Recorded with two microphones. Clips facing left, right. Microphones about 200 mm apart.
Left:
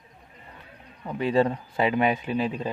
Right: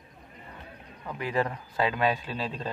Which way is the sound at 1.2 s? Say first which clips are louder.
Left 7 dB; 25° left (ahead or behind).